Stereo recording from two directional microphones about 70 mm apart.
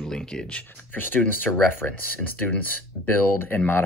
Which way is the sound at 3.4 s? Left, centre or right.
Left.